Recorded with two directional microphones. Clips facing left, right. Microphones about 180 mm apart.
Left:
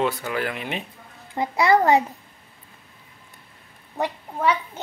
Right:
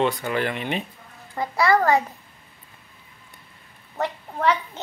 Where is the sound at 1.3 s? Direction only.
20° left (ahead or behind).